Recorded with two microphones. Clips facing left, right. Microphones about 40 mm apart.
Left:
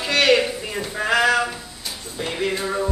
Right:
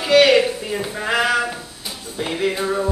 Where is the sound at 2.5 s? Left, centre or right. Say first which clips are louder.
Right 2 dB; centre.